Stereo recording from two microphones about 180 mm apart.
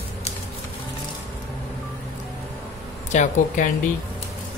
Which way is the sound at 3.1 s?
40° left (ahead or behind).